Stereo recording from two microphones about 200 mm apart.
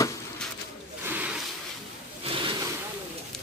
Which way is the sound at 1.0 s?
5° right (ahead or behind).